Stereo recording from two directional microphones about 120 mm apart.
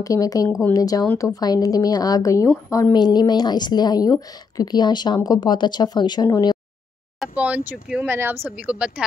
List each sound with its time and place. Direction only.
0.0 s speech: 30° left (ahead or behind)
7.3 s a woman's voice: 10° right (ahead or behind)